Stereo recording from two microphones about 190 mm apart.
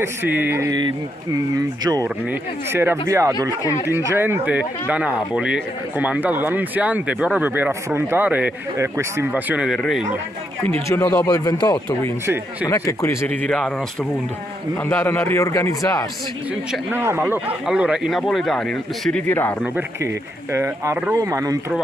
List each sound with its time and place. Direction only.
0.0 s speech: 10° right (ahead or behind)
2.7 s speech: 10° right (ahead or behind)
10.9 s a man's voice: 15° left (ahead or behind)
14.8 s a man's voice: 10° left (ahead or behind)
16.7 s a man's voice: 10° right (ahead or behind); by 19.5 s 10° left (ahead or behind)
20.5 s speech: 15° right (ahead or behind)